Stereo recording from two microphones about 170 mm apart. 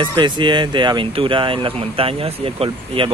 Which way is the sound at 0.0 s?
30° right (ahead or behind).